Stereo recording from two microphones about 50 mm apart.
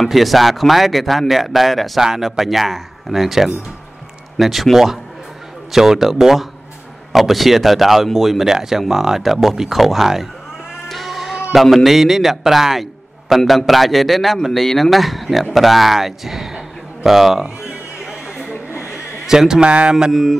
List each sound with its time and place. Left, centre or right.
0.0 s speech: centre
10.9 s music: centre
11.5 s speech: centre
19.2 s speech: centre
20.1 s speech: centre